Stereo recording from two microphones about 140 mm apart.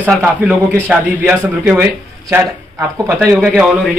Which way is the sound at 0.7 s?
10° right (ahead or behind).